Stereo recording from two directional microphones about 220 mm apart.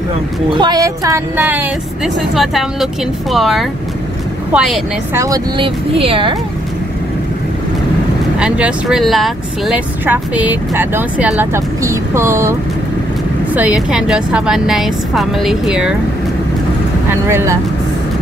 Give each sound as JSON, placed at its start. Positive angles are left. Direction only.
{"t": 0.6, "sound": "a woman's voice", "side_deg": -15}
{"t": 5.2, "sound": "speech", "side_deg": -20}
{"t": 8.4, "sound": "speech", "side_deg": -5}
{"t": 13.6, "sound": "a woman's voice", "side_deg": -5}
{"t": 17.3, "sound": "speech", "side_deg": -10}